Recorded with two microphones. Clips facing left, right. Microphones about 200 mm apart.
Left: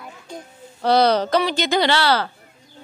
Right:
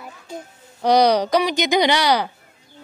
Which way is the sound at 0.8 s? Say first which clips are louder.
Right 1 dB; 15° right (ahead or behind).